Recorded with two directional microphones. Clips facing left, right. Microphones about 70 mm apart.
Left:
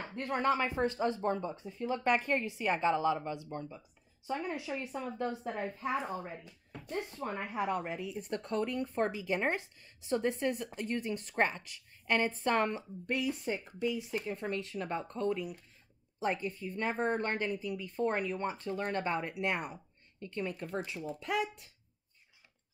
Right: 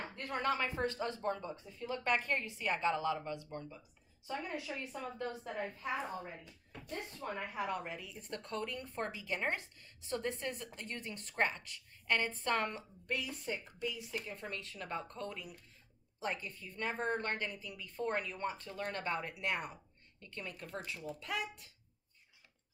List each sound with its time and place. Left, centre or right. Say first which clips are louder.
0.1 s a woman's voice: left 6 dB; left
7.2 s speech: left 2 dB; left
7.5 s a woman's voice: left 8 dB; left